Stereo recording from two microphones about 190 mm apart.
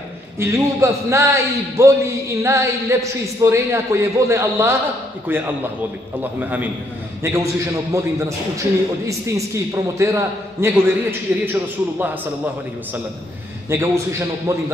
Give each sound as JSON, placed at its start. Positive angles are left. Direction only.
{"t": 0.4, "sound": "a man's voice", "side_deg": -15}
{"t": 13.7, "sound": "a man's voice", "side_deg": -15}